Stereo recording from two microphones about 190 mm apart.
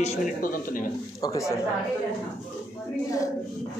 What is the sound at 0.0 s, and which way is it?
Speech, 40° left (ahead or behind).